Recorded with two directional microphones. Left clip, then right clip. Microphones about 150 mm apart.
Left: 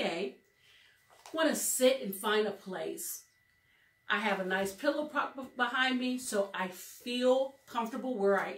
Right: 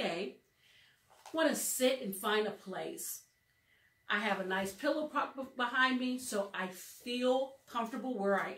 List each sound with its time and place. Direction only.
1.3 s speech: 10° left (ahead or behind)
4.0 s a woman's voice: 5° left (ahead or behind)